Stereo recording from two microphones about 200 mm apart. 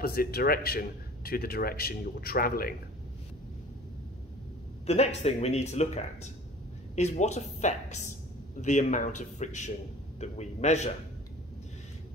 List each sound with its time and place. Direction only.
0.0 s a man's voice: 50° left (ahead or behind)
4.8 s speech: 30° left (ahead or behind)